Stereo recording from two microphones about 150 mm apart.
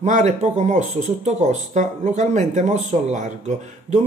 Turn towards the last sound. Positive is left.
turn(degrees=-50)  # may be behind; listen again after turning